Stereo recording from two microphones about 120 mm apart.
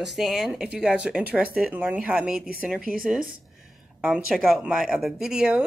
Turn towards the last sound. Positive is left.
turn(degrees=-5)  # may be behind; listen again after turning